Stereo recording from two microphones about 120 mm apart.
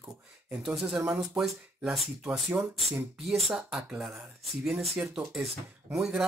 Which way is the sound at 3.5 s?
10° right (ahead or behind).